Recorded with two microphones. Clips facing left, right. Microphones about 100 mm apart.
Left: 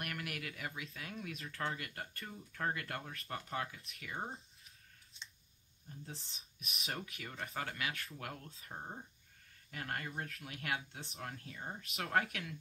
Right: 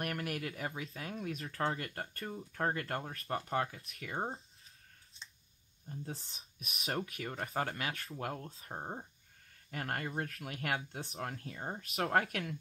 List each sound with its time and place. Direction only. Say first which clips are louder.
0.0 s speech: right 6 dB; 40° right (ahead or behind)
5.9 s speech: right 6 dB; 35° right (ahead or behind)